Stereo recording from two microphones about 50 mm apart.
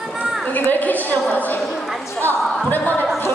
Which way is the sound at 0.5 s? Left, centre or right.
Left.